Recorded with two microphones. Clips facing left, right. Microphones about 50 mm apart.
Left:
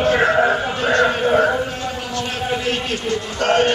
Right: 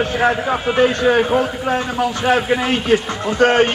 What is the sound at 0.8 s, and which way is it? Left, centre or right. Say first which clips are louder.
Speech: left 3 dB; left.